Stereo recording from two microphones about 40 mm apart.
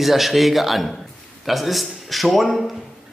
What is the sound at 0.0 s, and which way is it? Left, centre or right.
Speech, centre.